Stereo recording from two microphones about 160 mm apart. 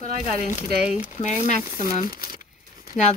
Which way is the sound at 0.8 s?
45° left (ahead or behind).